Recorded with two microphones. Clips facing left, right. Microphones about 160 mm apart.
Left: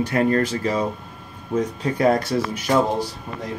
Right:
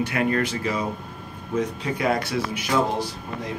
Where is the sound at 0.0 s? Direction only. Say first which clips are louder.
Left 4 dB; 40° left (ahead or behind).